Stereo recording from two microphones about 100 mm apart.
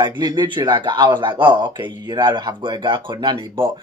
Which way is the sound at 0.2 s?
50° right (ahead or behind).